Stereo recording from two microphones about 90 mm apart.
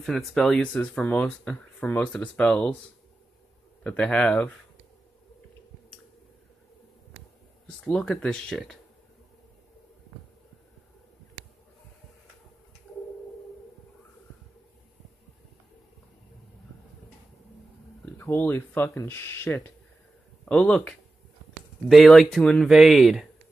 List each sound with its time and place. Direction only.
0.0 s speech: 5° left (ahead or behind)
3.8 s speech: 15° left (ahead or behind)
7.6 s speech: 10° left (ahead or behind)
18.0 s speech: 25° left (ahead or behind)
20.4 s speech: 10° left (ahead or behind)
22.7 s speech: 5° right (ahead or behind)